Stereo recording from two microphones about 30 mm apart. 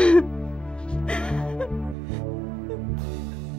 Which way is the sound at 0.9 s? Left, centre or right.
Left.